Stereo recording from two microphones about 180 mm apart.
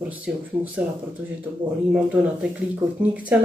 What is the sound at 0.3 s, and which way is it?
Speech, 5° right (ahead or behind).